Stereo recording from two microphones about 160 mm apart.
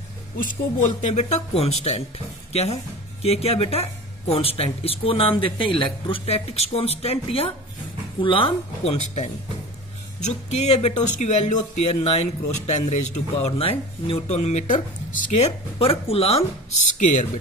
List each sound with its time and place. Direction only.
0.4 s speech: 50° left (ahead or behind)
17.0 s speech: 50° left (ahead or behind)